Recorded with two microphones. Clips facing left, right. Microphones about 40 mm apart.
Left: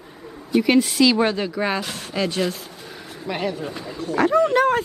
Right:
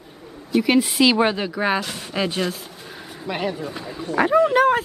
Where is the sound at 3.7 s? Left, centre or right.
Centre.